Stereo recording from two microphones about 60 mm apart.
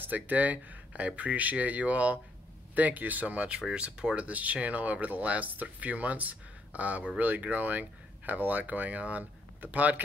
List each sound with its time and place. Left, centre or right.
0.0 s speech: right